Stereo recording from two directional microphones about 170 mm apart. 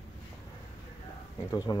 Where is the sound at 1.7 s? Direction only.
25° left (ahead or behind).